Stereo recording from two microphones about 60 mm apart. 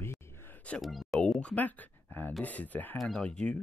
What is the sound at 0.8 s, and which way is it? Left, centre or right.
Speech, centre.